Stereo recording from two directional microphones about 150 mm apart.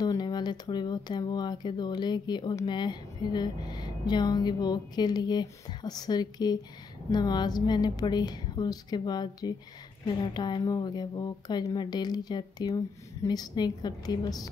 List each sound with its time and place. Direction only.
0.0 s speech: 25° left (ahead or behind)